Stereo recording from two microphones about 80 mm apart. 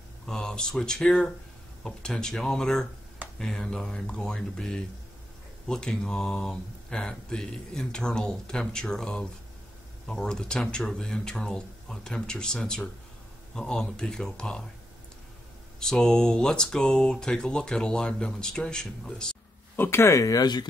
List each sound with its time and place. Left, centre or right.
0.3 s speech: centre
15.8 s speech: centre
19.8 s speech: left